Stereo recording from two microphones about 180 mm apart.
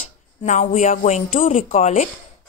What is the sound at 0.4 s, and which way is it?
Speech, 40° left (ahead or behind).